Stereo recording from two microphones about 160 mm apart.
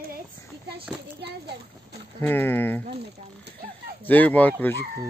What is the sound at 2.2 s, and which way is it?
Speech, 10° left (ahead or behind).